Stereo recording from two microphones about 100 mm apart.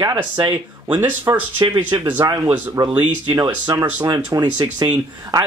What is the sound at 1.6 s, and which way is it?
Speech, 50° right (ahead or behind).